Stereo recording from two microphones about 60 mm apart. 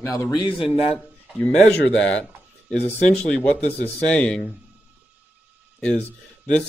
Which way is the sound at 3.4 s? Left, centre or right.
Left.